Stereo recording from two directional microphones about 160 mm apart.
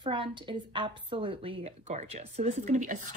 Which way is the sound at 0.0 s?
30° right (ahead or behind).